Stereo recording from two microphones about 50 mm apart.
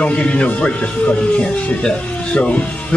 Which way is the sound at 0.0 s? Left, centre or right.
Left.